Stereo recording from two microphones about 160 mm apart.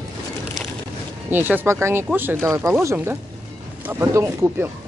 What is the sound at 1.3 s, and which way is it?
Speech, 10° right (ahead or behind).